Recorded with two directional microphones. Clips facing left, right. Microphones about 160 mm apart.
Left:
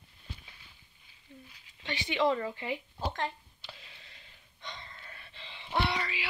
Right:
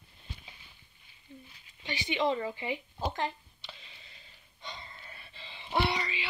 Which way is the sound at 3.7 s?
5° left (ahead or behind).